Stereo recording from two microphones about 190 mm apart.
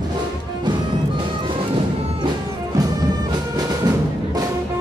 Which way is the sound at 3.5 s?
20° right (ahead or behind).